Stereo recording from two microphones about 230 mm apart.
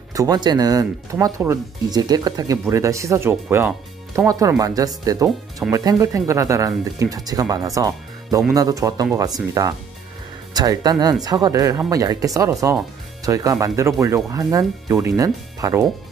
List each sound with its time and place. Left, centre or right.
0.1 s speech: centre